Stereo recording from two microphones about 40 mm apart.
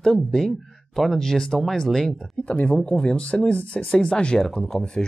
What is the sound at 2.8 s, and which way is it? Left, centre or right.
Speech, left.